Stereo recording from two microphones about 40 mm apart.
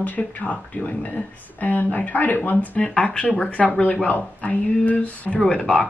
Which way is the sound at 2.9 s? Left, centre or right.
Left.